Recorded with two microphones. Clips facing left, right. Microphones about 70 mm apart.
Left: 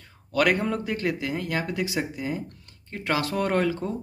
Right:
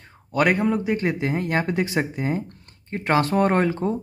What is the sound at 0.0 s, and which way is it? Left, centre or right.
Speech, right.